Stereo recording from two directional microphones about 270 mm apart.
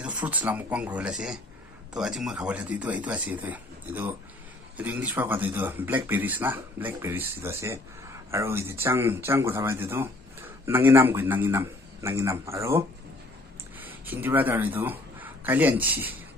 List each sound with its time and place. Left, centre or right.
0.0 s speech: centre